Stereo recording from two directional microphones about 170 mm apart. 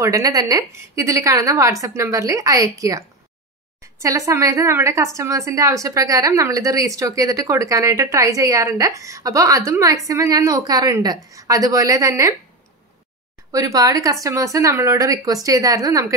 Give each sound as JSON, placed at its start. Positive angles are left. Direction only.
{"t": 0.0, "sound": "speech", "side_deg": -20}
{"t": 13.5, "sound": "speech", "side_deg": -20}